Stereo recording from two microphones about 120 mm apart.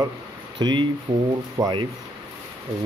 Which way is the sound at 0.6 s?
40° right (ahead or behind).